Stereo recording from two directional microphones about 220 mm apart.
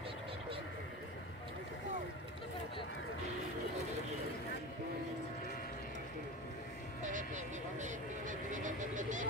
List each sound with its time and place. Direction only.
7.0 s vehicle: 35° right (ahead or behind)